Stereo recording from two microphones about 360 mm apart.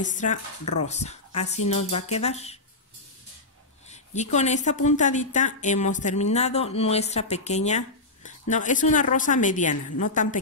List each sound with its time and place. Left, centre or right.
0.0 s a woman's voice: left
3.9 s a woman's voice: centre